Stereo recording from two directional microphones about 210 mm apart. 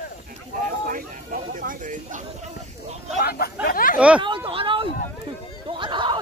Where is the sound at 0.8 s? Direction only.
40° right (ahead or behind).